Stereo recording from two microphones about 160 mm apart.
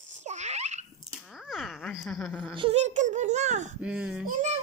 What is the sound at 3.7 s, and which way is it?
Speech, 5° right (ahead or behind).